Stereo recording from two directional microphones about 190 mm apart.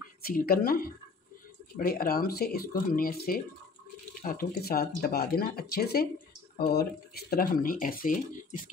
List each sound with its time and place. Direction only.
0.2 s speech: 50° left (ahead or behind)